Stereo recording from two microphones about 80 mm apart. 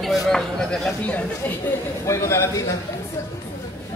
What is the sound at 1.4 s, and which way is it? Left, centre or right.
Speech, left.